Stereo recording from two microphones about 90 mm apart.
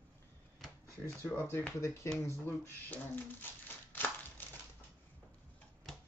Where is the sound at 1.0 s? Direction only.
25° left (ahead or behind).